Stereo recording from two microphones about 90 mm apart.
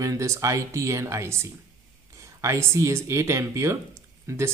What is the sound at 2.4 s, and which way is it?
Speech, 35° right (ahead or behind).